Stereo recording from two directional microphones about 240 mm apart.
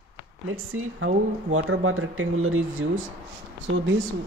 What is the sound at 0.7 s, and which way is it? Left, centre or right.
Speech, right.